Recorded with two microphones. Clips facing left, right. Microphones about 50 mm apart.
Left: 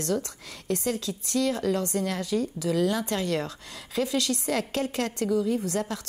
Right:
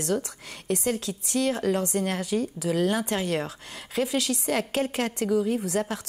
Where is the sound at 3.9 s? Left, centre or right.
Centre.